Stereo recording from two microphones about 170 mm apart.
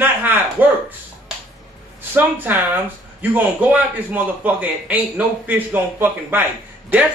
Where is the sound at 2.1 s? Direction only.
10° right (ahead or behind).